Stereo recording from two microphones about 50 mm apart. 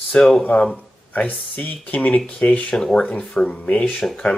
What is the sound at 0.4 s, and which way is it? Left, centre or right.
Speech, left.